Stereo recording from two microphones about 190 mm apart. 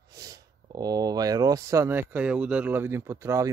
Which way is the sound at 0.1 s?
20° right (ahead or behind).